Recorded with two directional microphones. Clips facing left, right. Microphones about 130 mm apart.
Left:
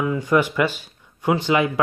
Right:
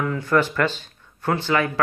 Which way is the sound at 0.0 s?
15° left (ahead or behind).